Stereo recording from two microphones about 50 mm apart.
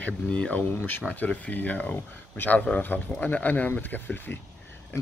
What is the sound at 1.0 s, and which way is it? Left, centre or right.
A man's voice, left.